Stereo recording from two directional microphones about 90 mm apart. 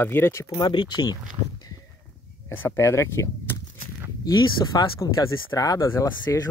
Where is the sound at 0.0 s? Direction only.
25° left (ahead or behind).